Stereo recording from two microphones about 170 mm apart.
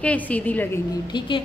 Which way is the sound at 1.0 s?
25° left (ahead or behind).